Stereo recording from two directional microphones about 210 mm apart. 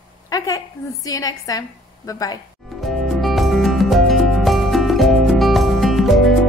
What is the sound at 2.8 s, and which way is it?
Music, centre (ahead or behind).